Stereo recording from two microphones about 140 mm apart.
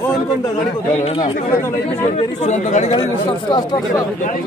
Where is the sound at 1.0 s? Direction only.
40° left (ahead or behind).